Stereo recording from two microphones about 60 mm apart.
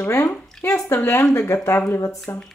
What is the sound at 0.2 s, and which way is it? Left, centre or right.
Speech, left.